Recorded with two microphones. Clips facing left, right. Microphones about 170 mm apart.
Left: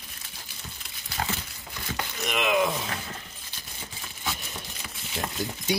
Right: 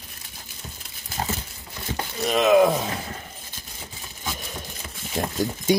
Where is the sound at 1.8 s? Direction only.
30° right (ahead or behind).